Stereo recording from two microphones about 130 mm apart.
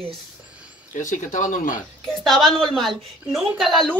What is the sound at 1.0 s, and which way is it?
Speech, 75° left (ahead or behind).